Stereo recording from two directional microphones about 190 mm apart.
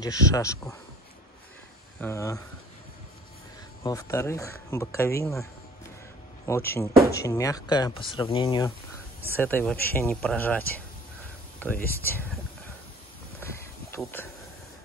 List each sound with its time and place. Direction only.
0.0 s speech: 20° left (ahead or behind)
2.0 s speech: 15° left (ahead or behind)
3.8 s speech: 15° left (ahead or behind)
6.7 s speech: 15° left (ahead or behind)
9.4 s speech: 10° left (ahead or behind)
13.4 s a sound: 10° left (ahead or behind)